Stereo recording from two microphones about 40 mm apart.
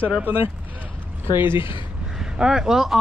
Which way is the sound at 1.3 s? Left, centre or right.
Right.